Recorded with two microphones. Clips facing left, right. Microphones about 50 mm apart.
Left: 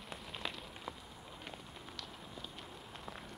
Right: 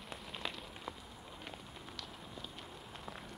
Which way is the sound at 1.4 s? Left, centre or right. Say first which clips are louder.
Even; centre.